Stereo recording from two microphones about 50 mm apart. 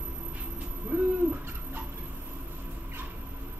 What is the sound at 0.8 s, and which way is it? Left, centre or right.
Owl, right.